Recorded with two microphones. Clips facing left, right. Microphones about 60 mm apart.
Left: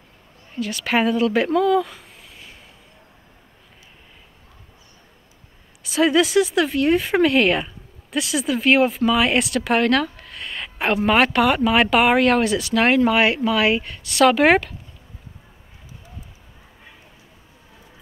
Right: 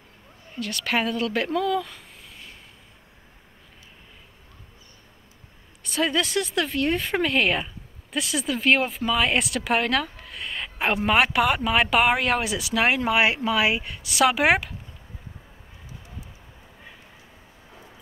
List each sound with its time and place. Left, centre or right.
0.6 s speech: centre
5.9 s speech: centre